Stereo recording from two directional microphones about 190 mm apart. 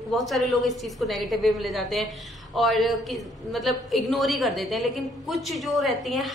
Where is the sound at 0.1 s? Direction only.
Centre (ahead or behind).